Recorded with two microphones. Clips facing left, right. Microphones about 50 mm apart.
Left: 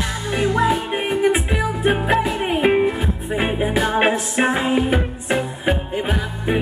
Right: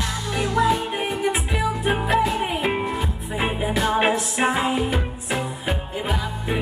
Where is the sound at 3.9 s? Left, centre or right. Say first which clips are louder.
Left 3 dB; left.